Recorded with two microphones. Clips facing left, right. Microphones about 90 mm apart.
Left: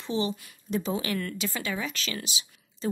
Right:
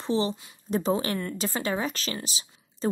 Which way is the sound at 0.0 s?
35° right (ahead or behind).